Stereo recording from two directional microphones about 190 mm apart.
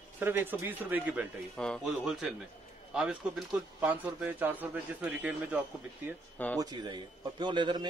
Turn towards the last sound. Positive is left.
turn(degrees=-25)  # may be behind; listen again after turning